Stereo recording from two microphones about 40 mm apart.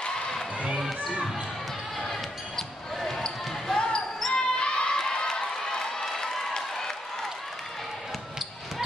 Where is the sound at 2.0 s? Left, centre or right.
Centre.